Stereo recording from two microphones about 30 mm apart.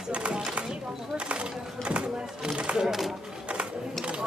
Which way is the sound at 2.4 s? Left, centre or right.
Right.